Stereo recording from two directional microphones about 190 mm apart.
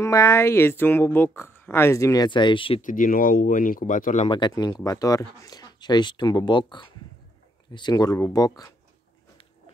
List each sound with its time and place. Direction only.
0.0 s speech: 15° left (ahead or behind)
2.8 s speech: 45° left (ahead or behind)
4.3 s speech: 25° left (ahead or behind)